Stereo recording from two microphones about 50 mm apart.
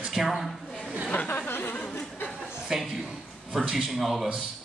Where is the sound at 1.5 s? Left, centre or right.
Left.